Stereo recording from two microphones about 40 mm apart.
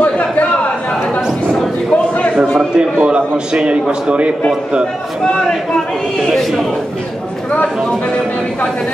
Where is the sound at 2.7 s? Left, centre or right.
Right.